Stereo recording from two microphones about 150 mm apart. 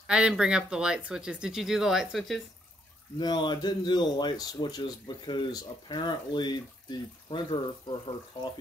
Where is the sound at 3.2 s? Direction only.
30° left (ahead or behind).